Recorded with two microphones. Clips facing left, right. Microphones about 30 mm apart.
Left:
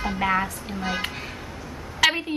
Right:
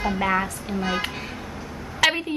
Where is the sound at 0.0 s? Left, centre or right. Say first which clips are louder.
Right 1 dB; centre.